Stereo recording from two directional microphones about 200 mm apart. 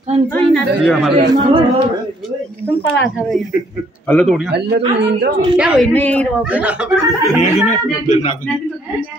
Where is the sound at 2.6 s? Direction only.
10° left (ahead or behind).